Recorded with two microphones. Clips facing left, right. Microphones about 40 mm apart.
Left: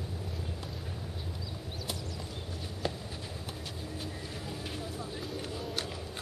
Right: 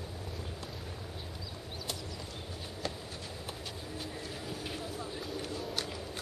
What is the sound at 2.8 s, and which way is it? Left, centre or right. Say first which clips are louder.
Clip-clop: left 4 dB; centre.